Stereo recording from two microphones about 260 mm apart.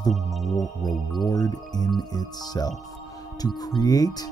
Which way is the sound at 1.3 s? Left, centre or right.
Centre.